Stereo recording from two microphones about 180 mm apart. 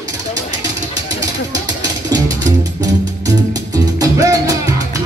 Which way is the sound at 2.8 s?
20° right (ahead or behind).